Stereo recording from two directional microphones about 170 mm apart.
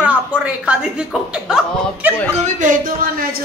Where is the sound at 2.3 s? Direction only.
45° right (ahead or behind).